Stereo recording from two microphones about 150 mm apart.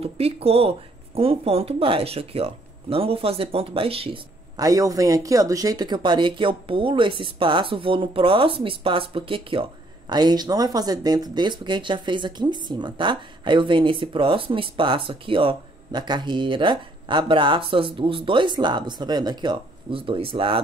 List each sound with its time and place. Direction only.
0.0 s speech: 40° right (ahead or behind)
4.6 s speech: 25° right (ahead or behind)